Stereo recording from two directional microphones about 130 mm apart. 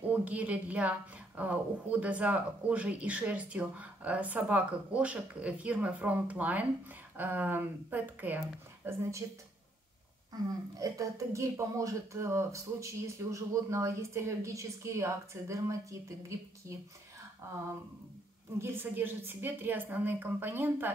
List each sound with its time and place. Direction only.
0.1 s a woman's voice: 10° right (ahead or behind)
10.8 s speech: 25° right (ahead or behind)
18.6 s a woman's voice: 15° right (ahead or behind)